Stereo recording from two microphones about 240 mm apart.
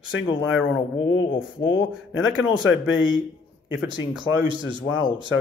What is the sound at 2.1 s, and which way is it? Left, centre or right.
A man's voice, left.